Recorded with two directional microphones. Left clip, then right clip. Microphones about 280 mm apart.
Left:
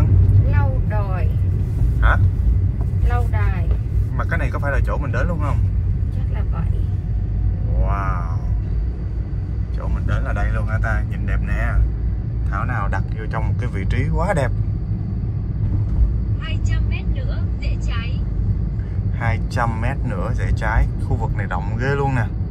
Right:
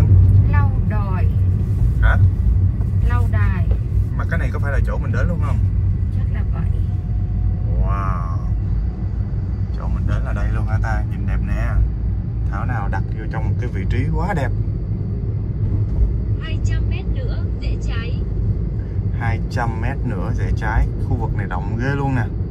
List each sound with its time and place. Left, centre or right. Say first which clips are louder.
0.0 s vehicle: right 1 dB; centre
12.5 s vehicle: left 2 dB; centre
19.2 s vehicle: left 2 dB; centre